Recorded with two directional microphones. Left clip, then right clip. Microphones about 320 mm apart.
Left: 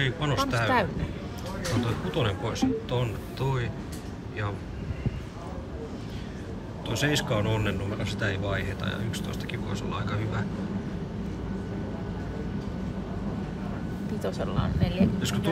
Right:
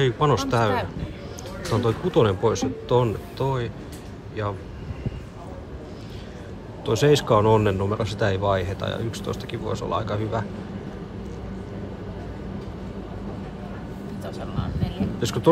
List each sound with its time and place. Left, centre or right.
0.0 s speech: centre
2.0 s speech: centre
6.9 s speech: centre
14.2 s a sound: centre
15.2 s speech: centre